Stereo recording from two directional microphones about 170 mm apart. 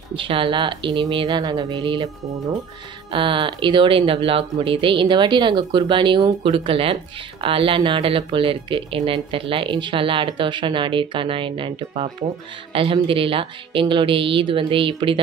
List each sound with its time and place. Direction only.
0.1 s speech: 30° right (ahead or behind)